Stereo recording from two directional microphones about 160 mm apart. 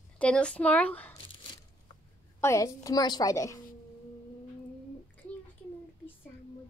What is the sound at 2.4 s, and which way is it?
A woman's voice, 20° left (ahead or behind).